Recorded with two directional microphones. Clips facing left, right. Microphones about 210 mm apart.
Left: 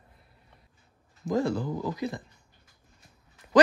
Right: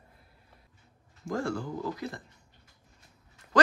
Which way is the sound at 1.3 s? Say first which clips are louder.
Left 5 dB; 20° left (ahead or behind).